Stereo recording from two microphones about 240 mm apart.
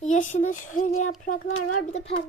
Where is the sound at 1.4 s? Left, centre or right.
Left.